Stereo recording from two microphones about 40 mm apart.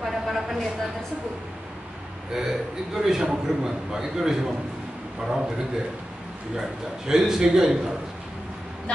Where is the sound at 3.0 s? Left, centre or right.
Centre.